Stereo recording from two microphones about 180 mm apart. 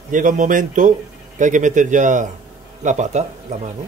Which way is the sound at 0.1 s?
45° right (ahead or behind).